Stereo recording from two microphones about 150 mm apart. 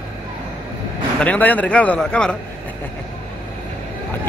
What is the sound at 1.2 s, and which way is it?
A man's voice, 10° left (ahead or behind).